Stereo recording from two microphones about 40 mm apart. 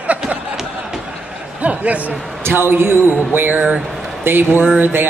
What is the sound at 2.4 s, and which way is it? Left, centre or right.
Speech, right.